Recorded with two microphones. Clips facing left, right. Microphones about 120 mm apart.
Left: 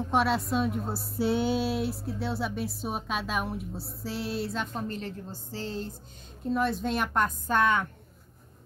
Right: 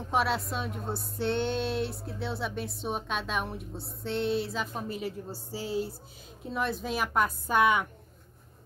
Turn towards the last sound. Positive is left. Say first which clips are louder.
# even
turn(degrees=-10)  # may be behind; listen again after turning